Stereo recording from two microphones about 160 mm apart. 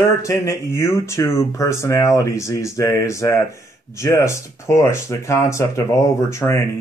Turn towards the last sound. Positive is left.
turn(degrees=20)  # may be behind; listen again after turning